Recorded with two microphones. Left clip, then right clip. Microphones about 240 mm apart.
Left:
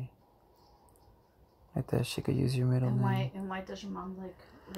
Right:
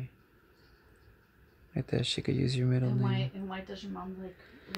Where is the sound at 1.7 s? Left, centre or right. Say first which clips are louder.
Right 2 dB; right.